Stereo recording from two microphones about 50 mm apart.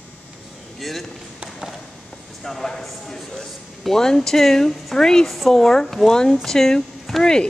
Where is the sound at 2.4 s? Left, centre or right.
Centre.